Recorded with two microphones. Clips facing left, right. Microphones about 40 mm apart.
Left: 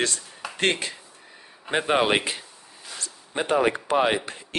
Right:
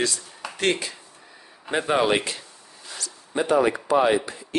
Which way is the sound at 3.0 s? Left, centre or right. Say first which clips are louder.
Right 3 dB; left.